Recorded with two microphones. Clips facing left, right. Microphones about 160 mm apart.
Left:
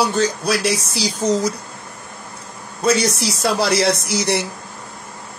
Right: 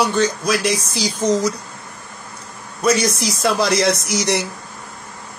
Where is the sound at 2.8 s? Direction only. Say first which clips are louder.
Even; 30° left (ahead or behind).